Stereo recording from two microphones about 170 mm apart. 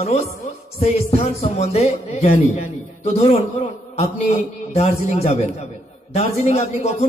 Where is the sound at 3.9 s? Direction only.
40° left (ahead or behind).